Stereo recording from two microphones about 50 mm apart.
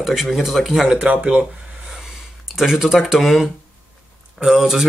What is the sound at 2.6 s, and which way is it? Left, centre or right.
Speech, centre.